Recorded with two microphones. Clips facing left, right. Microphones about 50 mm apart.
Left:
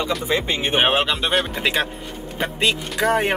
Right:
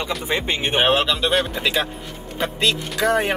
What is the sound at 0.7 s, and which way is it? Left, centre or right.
Speech, centre.